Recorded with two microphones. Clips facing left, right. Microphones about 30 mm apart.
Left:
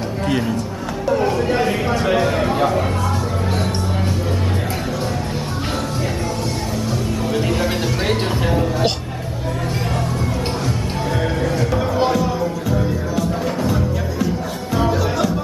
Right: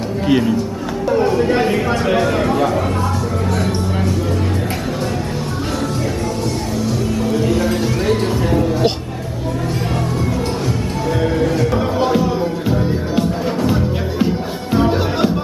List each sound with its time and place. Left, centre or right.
0.3 s a man's voice: centre
1.0 s chatter: centre
1.7 s a man's voice: centre
7.2 s music: centre
11.3 s music: centre
14.2 s music: right